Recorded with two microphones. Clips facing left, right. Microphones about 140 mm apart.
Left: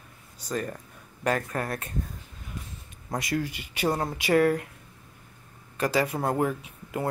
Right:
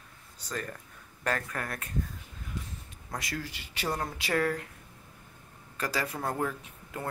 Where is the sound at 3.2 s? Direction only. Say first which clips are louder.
Left 8 dB; 20° left (ahead or behind).